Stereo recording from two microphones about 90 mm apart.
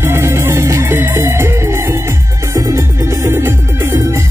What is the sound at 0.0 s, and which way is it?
Music, 30° right (ahead or behind).